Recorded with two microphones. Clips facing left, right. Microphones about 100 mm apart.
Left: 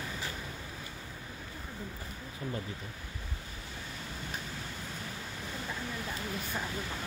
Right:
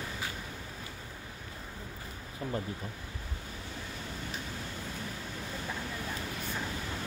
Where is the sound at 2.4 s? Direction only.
30° right (ahead or behind).